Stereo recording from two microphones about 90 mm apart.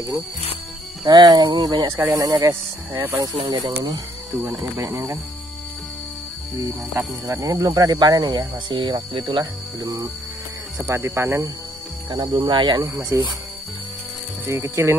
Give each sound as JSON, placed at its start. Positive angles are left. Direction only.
{"t": 1.0, "sound": "speech", "side_deg": -50}
{"t": 3.4, "sound": "speech", "side_deg": -45}
{"t": 4.3, "sound": "speech", "side_deg": -5}
{"t": 4.7, "sound": "speech", "side_deg": -35}
{"t": 7.4, "sound": "speech", "side_deg": -45}
{"t": 12.1, "sound": "speech", "side_deg": -65}
{"t": 12.8, "sound": "speech", "side_deg": -30}
{"t": 14.4, "sound": "speech", "side_deg": -30}